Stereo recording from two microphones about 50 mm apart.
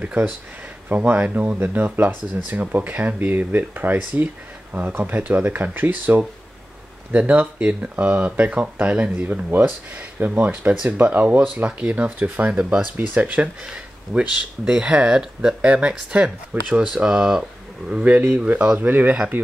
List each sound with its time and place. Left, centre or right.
0.8 s speech: right
10.1 s speech: right
12.9 s speech: right
13.7 s speech: centre
16.9 s speech: centre
18.8 s speech: right